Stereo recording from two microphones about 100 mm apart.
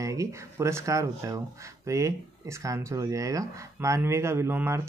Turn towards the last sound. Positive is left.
turn(degrees=-25)  # may be behind; listen again after turning